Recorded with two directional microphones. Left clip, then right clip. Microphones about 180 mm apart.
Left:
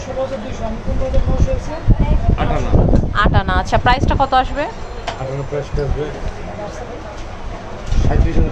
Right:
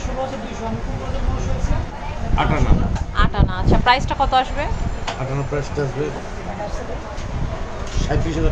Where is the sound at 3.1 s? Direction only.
25° left (ahead or behind).